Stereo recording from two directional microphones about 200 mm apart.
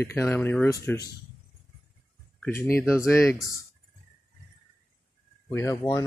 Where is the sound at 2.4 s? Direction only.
10° left (ahead or behind).